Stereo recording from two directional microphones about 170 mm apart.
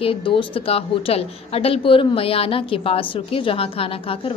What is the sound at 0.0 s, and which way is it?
A woman's voice, 35° left (ahead or behind).